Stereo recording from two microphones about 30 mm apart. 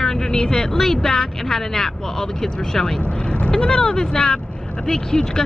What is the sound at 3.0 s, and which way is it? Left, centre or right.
Speech, left.